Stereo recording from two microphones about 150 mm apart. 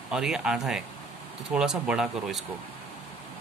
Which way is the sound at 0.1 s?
5° right (ahead or behind).